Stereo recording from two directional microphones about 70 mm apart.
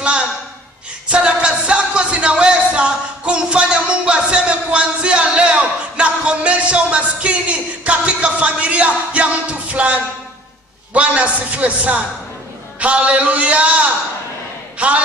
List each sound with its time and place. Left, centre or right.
1.0 s music: centre
10.9 s a man's voice: centre